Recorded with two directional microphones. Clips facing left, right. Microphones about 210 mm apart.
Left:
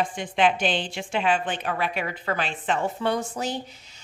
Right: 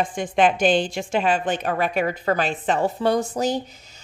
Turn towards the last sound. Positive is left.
turn(degrees=-40)  # may be behind; listen again after turning